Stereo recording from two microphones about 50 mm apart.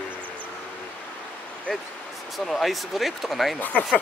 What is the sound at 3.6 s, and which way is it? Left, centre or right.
Speech, left.